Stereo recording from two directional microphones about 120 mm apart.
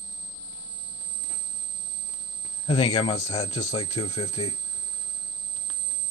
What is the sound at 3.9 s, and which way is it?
Speech, 45° left (ahead or behind).